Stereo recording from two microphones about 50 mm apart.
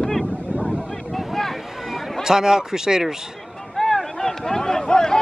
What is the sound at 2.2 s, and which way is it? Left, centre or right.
Speech, centre.